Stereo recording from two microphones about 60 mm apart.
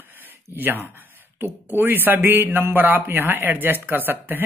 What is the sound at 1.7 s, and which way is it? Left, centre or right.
Speech, right.